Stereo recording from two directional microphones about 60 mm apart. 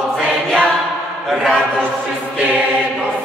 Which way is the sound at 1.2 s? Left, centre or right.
Centre.